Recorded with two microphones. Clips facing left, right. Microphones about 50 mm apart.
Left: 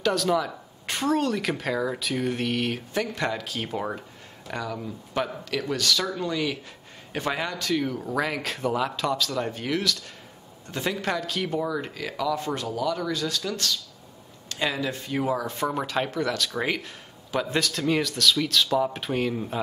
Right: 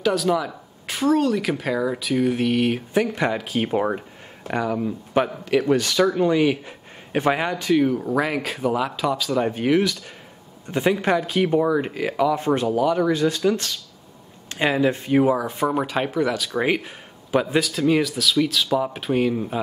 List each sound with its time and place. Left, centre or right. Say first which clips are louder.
0.0 s speech: right 3 dB; centre
9.1 s speech: right 5 dB; centre
17.5 s speech: right 3 dB; centre